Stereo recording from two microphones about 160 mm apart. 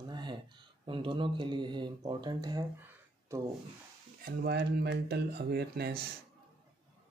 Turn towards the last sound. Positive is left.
turn(degrees=-90)